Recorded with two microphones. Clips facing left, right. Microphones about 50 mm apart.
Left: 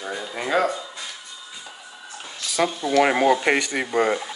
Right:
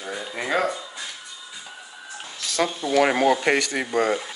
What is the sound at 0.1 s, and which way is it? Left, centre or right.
Speech, centre.